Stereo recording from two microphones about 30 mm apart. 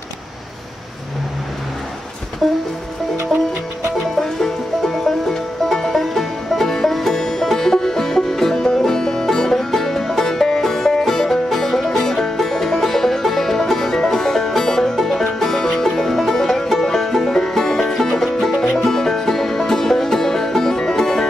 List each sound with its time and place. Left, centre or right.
2.4 s music: centre
4.2 s music: centre
15.8 s music: centre